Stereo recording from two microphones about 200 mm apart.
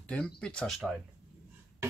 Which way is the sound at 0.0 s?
5° left (ahead or behind).